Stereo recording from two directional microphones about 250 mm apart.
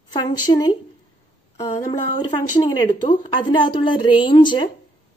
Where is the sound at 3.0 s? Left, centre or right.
Centre.